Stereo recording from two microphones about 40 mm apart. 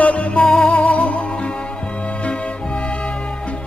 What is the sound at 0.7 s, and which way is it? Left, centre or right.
Music, left.